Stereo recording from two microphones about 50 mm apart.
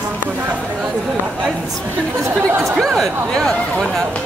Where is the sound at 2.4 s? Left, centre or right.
Right.